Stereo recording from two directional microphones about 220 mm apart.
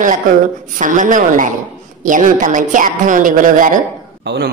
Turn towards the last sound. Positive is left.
turn(degrees=-50)  # may be behind; listen again after turning